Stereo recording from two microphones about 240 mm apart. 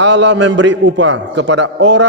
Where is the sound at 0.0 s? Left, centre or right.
Right.